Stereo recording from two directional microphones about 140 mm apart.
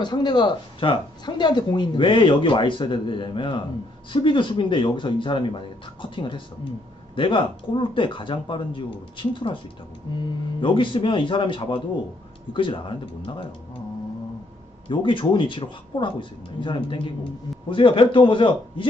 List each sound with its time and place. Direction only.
0.0 s speech: 30° left (ahead or behind)
14.9 s speech: 35° left (ahead or behind)